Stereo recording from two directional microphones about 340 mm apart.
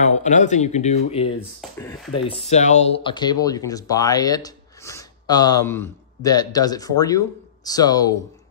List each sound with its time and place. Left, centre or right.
0.0 s speech: left
1.6 s speech: centre